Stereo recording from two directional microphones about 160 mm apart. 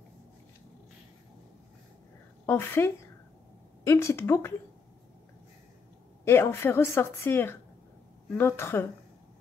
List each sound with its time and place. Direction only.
2.4 s a woman's voice: 15° left (ahead or behind)
6.2 s a woman's voice: 15° left (ahead or behind)